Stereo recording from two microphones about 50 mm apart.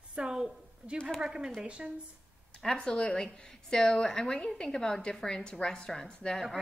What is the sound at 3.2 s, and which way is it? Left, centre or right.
A woman's voice, centre.